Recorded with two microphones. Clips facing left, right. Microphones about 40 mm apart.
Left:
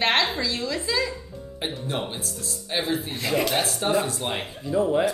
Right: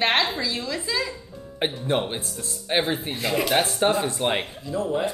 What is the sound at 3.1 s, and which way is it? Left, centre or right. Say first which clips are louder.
Speech: even; centre.